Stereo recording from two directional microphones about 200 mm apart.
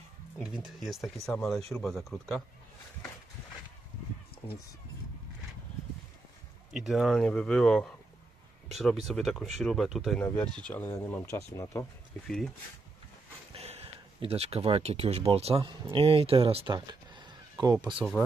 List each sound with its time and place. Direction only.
0.4 s speech: 5° right (ahead or behind)
6.7 s speech: centre (ahead or behind); by 11.9 s 15° left (ahead or behind)
13.5 s speech: 30° right (ahead or behind)
17.9 s speech: 5° right (ahead or behind)